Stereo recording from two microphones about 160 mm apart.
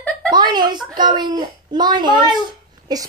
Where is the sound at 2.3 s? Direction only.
25° right (ahead or behind).